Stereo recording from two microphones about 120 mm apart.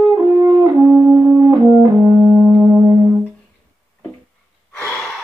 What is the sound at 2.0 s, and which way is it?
Brass instrument, 20° right (ahead or behind).